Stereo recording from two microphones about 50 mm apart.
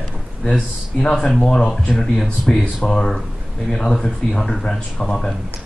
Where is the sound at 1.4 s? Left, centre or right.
Centre.